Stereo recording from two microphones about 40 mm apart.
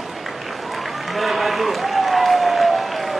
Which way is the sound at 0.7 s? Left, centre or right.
Centre.